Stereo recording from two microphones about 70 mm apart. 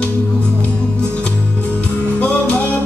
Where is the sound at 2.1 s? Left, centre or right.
Centre.